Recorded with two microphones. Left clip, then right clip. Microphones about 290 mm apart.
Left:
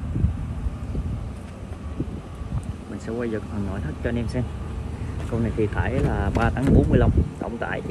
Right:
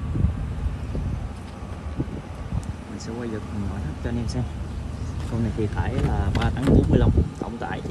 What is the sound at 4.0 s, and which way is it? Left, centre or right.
Speech, centre.